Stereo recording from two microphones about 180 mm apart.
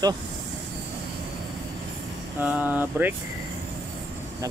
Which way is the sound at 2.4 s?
10° right (ahead or behind).